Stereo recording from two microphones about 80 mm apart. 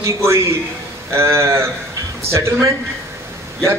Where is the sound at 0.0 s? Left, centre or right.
Right.